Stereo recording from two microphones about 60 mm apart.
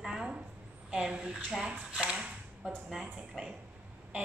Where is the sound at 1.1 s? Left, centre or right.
Centre.